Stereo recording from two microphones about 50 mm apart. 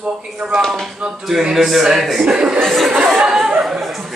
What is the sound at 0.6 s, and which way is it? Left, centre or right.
Speech, centre.